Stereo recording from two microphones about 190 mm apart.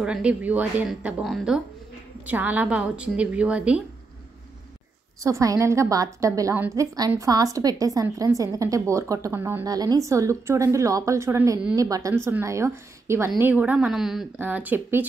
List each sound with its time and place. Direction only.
0.0 s a woman's voice: 5° right (ahead or behind)
5.2 s a woman's voice: 15° right (ahead or behind)